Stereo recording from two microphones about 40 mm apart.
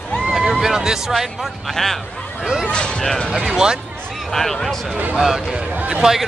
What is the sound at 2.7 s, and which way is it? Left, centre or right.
Speech, left.